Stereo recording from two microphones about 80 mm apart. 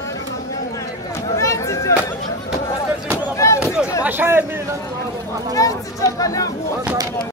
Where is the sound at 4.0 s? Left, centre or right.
Right.